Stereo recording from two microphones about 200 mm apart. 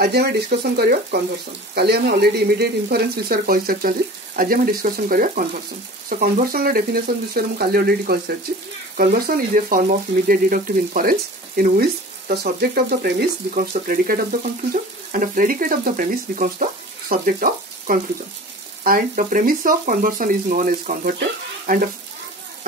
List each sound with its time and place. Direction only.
0.0 s speech: 55° right (ahead or behind)